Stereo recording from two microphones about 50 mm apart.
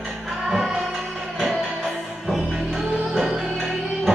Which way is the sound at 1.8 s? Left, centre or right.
Centre.